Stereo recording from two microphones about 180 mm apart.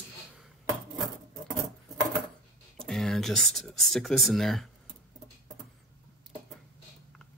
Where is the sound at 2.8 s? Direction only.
5° left (ahead or behind).